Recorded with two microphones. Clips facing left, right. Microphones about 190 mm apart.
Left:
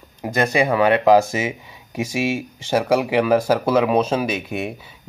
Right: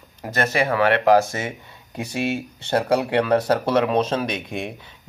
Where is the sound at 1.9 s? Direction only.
90° left.